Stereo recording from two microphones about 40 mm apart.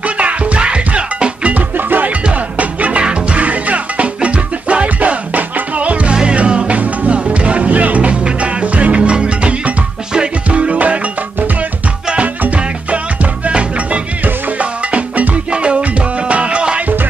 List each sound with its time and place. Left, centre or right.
0.0 s music: right
1.5 s music: right
3.0 s music: right
3.3 s music: right
12.1 s music: right